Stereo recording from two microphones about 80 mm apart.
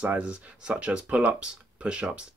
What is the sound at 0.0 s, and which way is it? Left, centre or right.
Speech, centre.